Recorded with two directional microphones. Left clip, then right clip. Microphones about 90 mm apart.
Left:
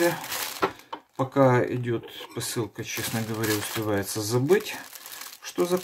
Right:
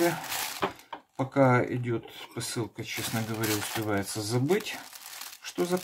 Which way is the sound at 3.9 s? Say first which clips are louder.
Left 5 dB; 10° right (ahead or behind).